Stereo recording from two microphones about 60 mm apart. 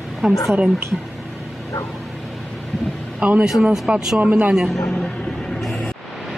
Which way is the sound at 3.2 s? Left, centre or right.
Centre.